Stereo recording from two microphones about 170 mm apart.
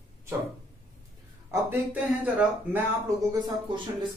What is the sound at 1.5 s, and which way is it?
Speech, 10° right (ahead or behind).